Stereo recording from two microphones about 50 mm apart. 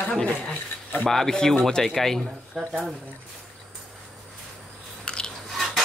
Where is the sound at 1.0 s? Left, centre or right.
Centre.